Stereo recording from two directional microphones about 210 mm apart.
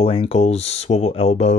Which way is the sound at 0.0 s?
25° left (ahead or behind).